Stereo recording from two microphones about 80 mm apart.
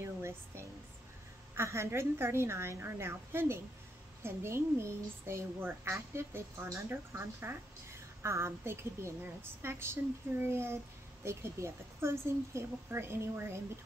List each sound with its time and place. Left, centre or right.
0.0 s a woman's voice: right